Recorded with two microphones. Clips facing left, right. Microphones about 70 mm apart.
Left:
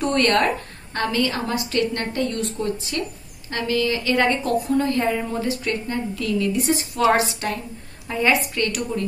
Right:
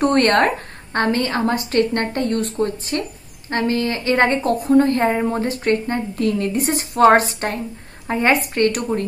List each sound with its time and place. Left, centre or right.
0.0 s a woman's voice: right